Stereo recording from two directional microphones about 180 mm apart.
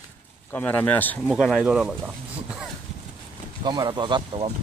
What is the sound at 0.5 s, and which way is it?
Speech, 10° left (ahead or behind).